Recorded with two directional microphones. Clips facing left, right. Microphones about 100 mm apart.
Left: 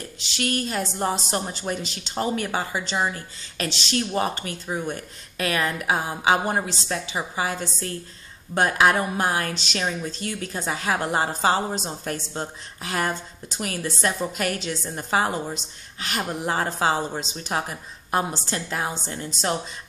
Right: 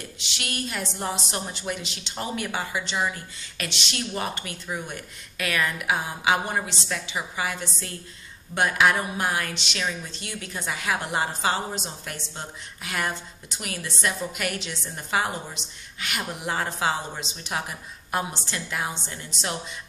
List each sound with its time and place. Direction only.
0.2 s speech: 40° left (ahead or behind)